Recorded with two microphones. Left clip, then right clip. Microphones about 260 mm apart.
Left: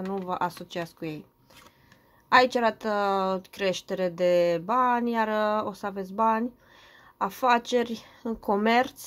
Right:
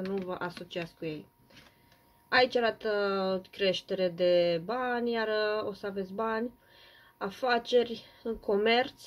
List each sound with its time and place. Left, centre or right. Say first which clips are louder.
0.1 s speech: left 10 dB; left
2.2 s speech: left 5 dB; left